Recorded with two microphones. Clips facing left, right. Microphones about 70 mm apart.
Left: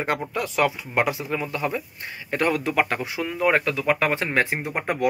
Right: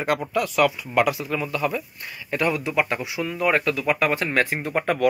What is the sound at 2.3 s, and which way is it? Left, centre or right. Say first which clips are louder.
Speech: left 1 dB; left.